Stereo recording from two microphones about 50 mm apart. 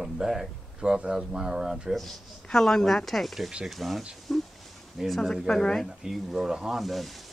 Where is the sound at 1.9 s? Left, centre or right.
Centre.